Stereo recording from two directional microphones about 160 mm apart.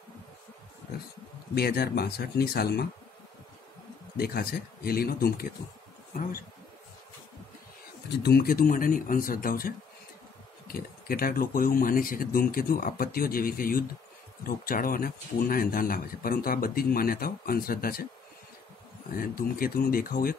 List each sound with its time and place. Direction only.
1.5 s speech: 80° left
4.2 s speech: 75° left (ahead or behind)
8.1 s speech: 85° left; by 18.0 s 65° left (ahead or behind)
19.1 s speech: 65° left (ahead or behind)